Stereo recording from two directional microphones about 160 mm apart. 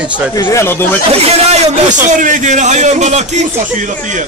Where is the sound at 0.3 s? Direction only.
20° left (ahead or behind).